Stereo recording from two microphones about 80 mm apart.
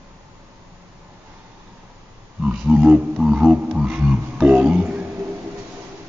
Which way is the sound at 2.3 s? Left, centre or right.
Centre.